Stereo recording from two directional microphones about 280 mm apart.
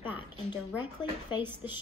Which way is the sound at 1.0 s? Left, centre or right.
Centre.